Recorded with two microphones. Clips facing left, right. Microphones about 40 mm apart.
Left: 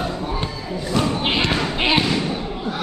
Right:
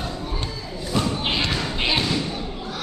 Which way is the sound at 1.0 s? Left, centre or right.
Centre.